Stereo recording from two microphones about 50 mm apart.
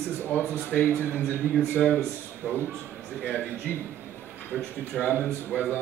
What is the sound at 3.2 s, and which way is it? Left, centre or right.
Speech, left.